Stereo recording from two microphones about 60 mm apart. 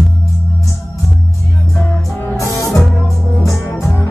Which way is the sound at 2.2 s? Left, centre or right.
Right.